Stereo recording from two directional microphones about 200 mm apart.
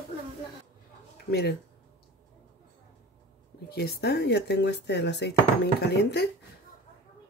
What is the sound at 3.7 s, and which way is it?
Speech, 50° left (ahead or behind).